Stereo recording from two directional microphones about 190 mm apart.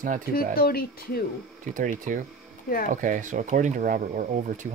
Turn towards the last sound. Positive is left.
turn(degrees=-40)  # may be behind; listen again after turning